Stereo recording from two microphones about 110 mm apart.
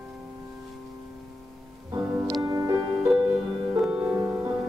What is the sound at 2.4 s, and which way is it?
Music, 30° right (ahead or behind).